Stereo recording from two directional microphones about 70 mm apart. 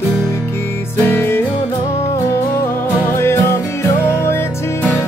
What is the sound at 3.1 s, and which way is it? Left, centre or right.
Music, left.